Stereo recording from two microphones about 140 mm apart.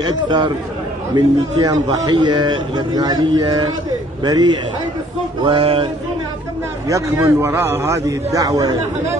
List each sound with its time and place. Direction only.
0.0 s a man's voice: 30° right (ahead or behind)
5.4 s a man's voice: 40° right (ahead or behind)
6.9 s a man's voice: 20° right (ahead or behind)